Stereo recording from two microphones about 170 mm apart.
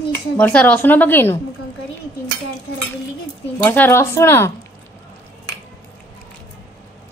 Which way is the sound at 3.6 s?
10° left (ahead or behind).